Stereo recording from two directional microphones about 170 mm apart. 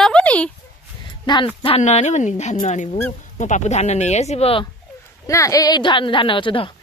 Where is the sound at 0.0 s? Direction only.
5° left (ahead or behind).